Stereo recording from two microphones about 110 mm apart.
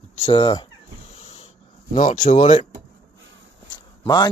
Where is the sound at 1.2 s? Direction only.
65° left (ahead or behind).